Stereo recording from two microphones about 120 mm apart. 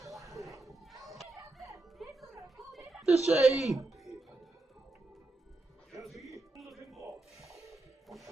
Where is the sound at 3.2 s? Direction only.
5° right (ahead or behind).